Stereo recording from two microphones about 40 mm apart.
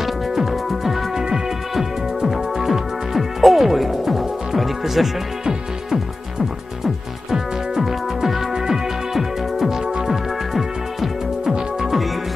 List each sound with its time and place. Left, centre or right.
0.0 s music: centre
6.8 s music: centre